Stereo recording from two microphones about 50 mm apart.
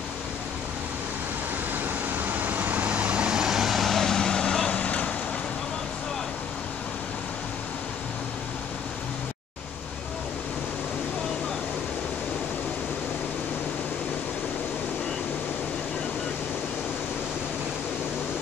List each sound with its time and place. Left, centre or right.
1.7 s vehicle: right; by 4.7 s centre
4.7 s vehicle: left